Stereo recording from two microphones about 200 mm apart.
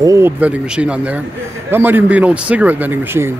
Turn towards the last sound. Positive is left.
turn(degrees=-10)  # may be behind; listen again after turning